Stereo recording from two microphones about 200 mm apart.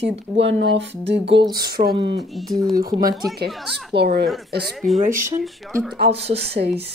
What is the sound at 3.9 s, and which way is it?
Speech, 55° right (ahead or behind).